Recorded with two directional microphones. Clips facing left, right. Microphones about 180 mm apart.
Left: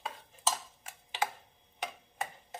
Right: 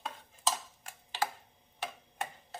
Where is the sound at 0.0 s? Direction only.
5° left (ahead or behind).